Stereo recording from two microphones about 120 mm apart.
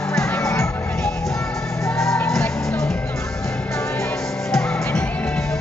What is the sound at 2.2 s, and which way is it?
Music, 5° left (ahead or behind).